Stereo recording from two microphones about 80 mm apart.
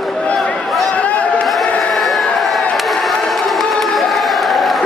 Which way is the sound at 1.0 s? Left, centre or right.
Centre.